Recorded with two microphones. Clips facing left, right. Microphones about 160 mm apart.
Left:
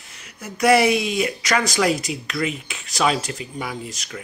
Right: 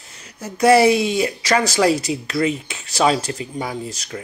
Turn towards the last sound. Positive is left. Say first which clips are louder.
# right 4 dB
turn(degrees=-30)  # may be behind; listen again after turning